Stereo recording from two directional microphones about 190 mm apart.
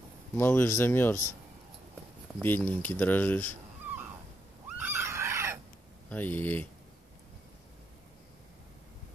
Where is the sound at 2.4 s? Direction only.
10° left (ahead or behind).